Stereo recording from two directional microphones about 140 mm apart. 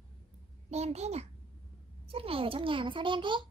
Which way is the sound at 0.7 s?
50° right (ahead or behind).